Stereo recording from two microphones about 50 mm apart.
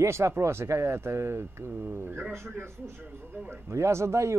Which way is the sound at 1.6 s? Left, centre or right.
Right.